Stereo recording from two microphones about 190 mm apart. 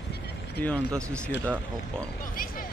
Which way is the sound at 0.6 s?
5° left (ahead or behind).